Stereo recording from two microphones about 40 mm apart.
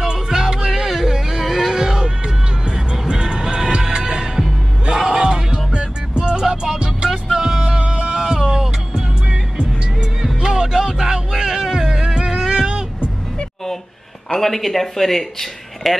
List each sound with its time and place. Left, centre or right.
0.0 s music: centre
7.6 s music: right
14.4 s speech: centre